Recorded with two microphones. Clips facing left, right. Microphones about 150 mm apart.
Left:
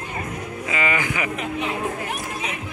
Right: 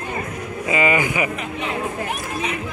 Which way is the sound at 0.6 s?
15° right (ahead or behind).